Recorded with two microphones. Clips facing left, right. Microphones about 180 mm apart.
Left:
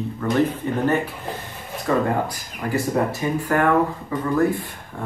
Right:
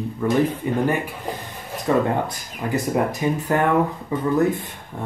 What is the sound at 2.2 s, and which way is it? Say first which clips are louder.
Speech: even; 20° right (ahead or behind).